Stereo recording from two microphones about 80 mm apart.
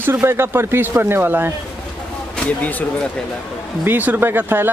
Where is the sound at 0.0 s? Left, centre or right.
Right.